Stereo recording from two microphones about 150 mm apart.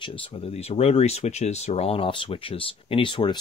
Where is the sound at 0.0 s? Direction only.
35° left (ahead or behind).